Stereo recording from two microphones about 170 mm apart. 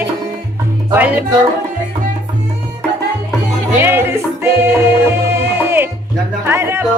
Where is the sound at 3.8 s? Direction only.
15° right (ahead or behind).